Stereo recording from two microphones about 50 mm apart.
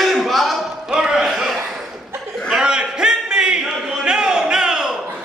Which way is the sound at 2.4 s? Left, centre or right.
Centre.